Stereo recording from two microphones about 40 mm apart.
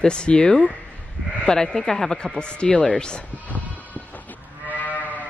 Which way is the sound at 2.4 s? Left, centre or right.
Left.